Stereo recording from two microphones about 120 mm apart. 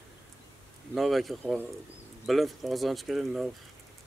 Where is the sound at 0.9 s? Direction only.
Centre (ahead or behind).